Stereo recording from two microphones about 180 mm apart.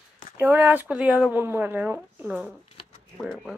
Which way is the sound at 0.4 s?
10° right (ahead or behind).